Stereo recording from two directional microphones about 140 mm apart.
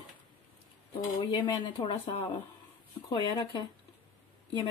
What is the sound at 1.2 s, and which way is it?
Speech, 35° left (ahead or behind).